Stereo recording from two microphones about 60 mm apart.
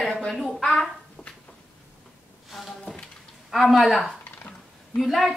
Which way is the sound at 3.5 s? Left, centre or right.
Centre.